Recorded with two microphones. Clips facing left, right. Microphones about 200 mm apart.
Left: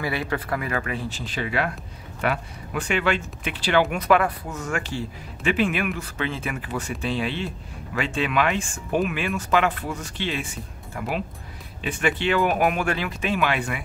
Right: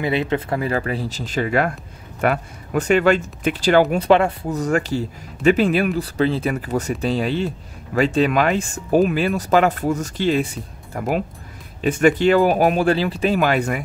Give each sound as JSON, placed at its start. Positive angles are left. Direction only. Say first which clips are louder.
{"t": 0.0, "sound": "speech", "louder": "right 6 dB", "side_deg": -20}